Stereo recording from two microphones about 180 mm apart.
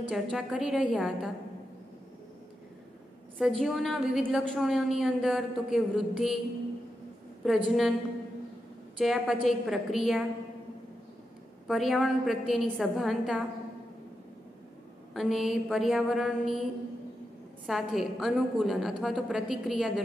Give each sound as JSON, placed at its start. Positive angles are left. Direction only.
{"t": 0.1, "sound": "a woman's voice", "side_deg": 0}
{"t": 3.3, "sound": "a woman's voice", "side_deg": 0}
{"t": 7.4, "sound": "a woman's voice", "side_deg": 0}
{"t": 8.9, "sound": "a woman's voice", "side_deg": 0}
{"t": 11.6, "sound": "a woman's voice", "side_deg": 0}
{"t": 15.1, "sound": "a woman's voice", "side_deg": 0}
{"t": 17.6, "sound": "a woman's voice", "side_deg": 0}